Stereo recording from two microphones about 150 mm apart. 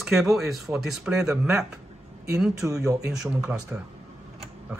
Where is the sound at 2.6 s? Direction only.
20° right (ahead or behind).